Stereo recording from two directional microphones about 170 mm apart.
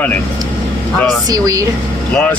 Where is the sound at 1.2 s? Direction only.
20° right (ahead or behind).